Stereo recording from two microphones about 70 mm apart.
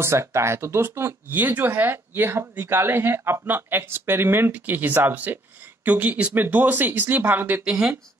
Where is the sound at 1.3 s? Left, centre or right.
Right.